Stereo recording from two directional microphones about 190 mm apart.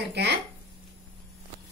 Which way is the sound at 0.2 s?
60° right (ahead or behind).